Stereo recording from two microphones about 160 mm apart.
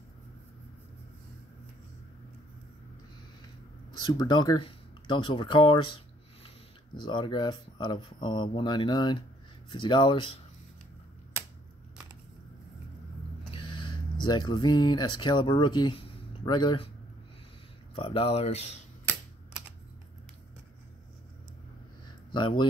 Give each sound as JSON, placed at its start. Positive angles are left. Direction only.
{"t": 4.0, "sound": "speech", "side_deg": 25}
{"t": 7.0, "sound": "speech", "side_deg": 30}
{"t": 13.5, "sound": "speech", "side_deg": 30}
{"t": 17.9, "sound": "speech", "side_deg": 35}
{"t": 22.3, "sound": "speech", "side_deg": 30}